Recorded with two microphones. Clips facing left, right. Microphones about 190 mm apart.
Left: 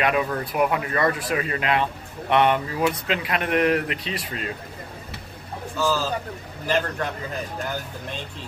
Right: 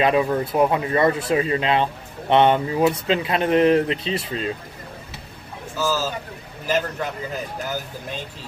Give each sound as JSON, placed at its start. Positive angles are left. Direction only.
{"t": 0.0, "sound": "speech", "side_deg": -25}
{"t": 5.8, "sound": "a man's voice", "side_deg": -5}